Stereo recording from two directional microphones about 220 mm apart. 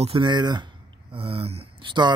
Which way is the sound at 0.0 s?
25° right (ahead or behind).